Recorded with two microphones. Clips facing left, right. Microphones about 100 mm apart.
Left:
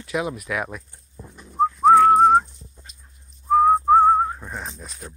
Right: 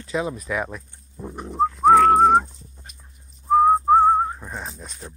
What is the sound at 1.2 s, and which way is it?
Dog, 80° right.